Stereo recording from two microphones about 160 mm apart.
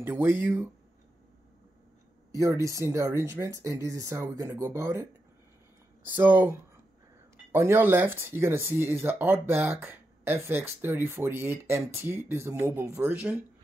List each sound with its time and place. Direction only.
0.0 s speech: 15° right (ahead or behind)
2.3 s speech: 20° right (ahead or behind)
6.0 s speech: 10° right (ahead or behind)
7.5 s speech: 15° right (ahead or behind)